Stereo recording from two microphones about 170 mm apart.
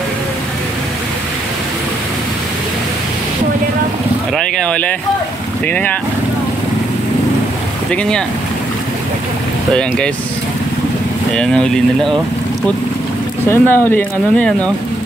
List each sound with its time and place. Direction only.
4.3 s speech: 5° left (ahead or behind)
7.9 s speech: 5° left (ahead or behind)
9.8 s speech: 5° left (ahead or behind)
11.3 s speech: 5° left (ahead or behind)
13.5 s speech: 10° left (ahead or behind)